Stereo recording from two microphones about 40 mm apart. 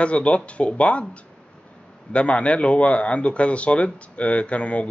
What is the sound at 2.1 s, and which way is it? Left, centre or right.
Speech, left.